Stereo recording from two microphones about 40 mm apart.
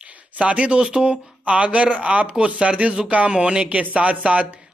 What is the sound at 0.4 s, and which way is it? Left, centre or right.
Speech, right.